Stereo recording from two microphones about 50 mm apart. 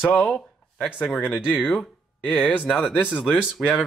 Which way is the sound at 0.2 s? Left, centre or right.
Left.